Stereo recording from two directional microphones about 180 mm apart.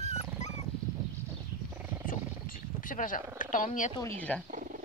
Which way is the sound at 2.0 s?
50° left (ahead or behind).